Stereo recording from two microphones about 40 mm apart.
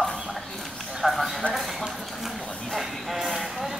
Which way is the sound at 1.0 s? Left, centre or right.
Centre.